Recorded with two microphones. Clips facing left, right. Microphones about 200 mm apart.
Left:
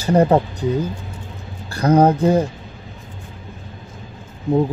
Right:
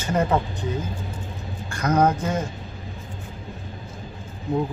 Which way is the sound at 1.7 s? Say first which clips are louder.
Left 6 dB; 30° left (ahead or behind).